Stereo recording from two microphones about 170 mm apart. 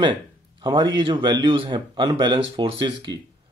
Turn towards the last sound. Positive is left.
turn(degrees=-25)  # may be behind; listen again after turning